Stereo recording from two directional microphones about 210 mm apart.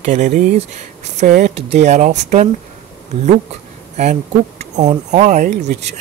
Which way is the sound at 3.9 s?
35° right (ahead or behind).